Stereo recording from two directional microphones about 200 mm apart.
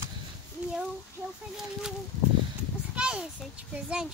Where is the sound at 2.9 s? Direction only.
5° right (ahead or behind).